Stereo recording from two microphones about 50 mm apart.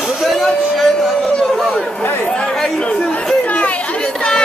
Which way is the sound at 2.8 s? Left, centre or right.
Left.